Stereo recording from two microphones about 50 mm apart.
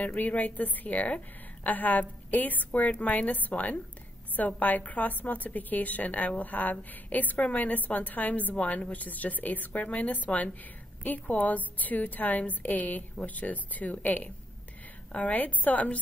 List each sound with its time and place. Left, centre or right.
0.0 s a woman's voice: left